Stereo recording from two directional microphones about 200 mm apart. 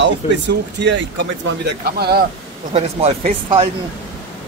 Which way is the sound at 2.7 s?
30° right (ahead or behind).